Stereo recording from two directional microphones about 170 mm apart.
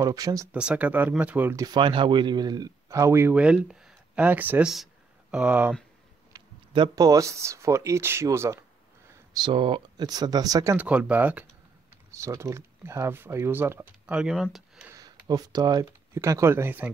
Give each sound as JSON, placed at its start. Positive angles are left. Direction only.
{"t": 0.0, "sound": "speech", "side_deg": -20}
{"t": 0.5, "sound": "speech", "side_deg": -5}
{"t": 1.7, "sound": "speech", "side_deg": -30}
{"t": 6.3, "sound": "speech", "side_deg": -25}
{"t": 9.3, "sound": "speech", "side_deg": -25}
{"t": 14.9, "sound": "a sound", "side_deg": -20}
{"t": 15.2, "sound": "speech", "side_deg": -20}